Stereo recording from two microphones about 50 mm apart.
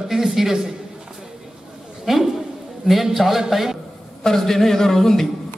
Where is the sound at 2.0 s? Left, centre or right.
Centre.